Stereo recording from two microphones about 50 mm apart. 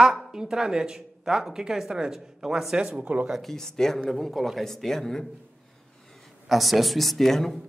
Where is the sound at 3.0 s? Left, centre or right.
Right.